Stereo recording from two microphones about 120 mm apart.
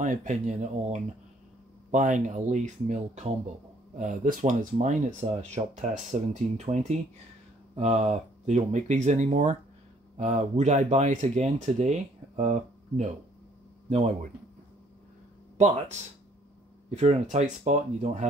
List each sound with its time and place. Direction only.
0.0 s speech: 90° right
1.9 s speech: 90° right
4.0 s speech: 90° right
10.1 s speech: 75° right (ahead or behind)
15.5 s speech: 75° right (ahead or behind)